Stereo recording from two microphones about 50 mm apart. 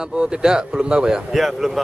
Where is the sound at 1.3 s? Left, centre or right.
Centre.